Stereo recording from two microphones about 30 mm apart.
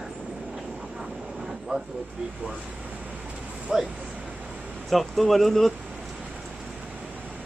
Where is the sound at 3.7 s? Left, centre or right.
Right.